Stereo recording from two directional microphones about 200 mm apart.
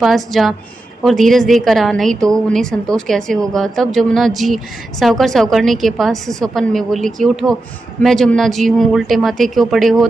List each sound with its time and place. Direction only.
0.0 s speech: centre (ahead or behind)